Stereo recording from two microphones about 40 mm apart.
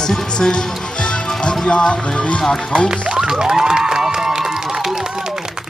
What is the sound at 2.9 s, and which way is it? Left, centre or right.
Music, centre.